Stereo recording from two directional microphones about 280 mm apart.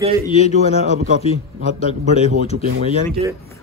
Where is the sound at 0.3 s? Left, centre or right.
Left.